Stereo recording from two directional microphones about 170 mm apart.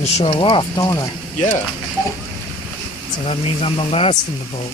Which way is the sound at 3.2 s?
35° left (ahead or behind).